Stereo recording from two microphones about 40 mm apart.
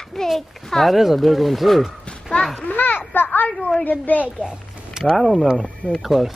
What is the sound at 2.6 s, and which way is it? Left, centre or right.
Speech, left.